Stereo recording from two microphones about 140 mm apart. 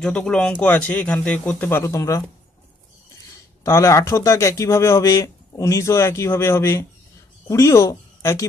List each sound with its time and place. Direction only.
0.0 s speech: 5° left (ahead or behind); by 2.2 s 25° left (ahead or behind)
3.6 s speech: 20° left (ahead or behind)